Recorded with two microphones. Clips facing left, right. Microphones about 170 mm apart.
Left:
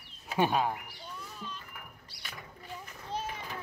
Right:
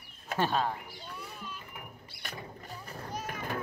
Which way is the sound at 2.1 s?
50° right (ahead or behind).